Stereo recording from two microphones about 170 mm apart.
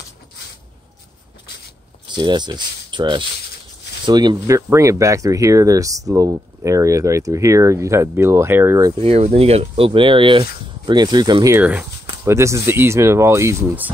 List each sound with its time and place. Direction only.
2.0 s speech: 25° right (ahead or behind)
9.0 s speech: 40° right (ahead or behind); by 13.8 s 15° right (ahead or behind)